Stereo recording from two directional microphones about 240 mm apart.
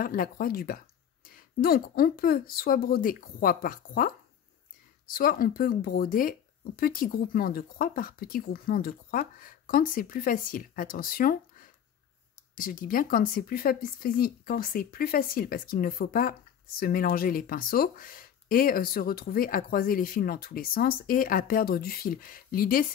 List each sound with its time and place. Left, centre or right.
0.0 s a woman's voice: left